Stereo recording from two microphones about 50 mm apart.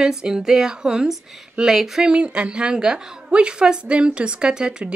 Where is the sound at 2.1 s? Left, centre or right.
Right.